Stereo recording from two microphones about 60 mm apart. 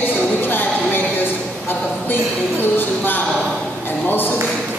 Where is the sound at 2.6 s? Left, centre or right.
Left.